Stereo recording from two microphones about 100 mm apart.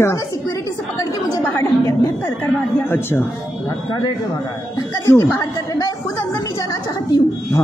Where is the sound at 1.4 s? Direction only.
25° left (ahead or behind).